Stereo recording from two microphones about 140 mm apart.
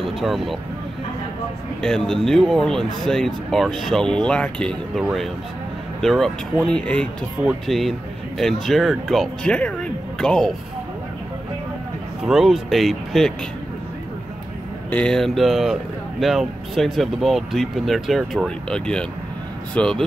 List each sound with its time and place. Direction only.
0.0 s speech: centre (ahead or behind)
1.8 s speech: 5° left (ahead or behind)
12.2 s speech: centre (ahead or behind)
14.9 s speech: 5° left (ahead or behind)